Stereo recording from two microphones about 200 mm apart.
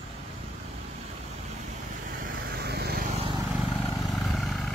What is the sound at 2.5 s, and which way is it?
Vehicle, 55° right (ahead or behind).